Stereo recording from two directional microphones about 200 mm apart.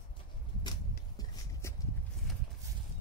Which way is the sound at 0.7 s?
20° left (ahead or behind).